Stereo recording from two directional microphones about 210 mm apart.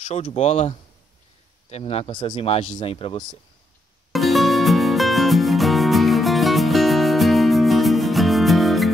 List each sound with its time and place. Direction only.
0.0 s speech: 30° left (ahead or behind)
4.1 s music: centre (ahead or behind)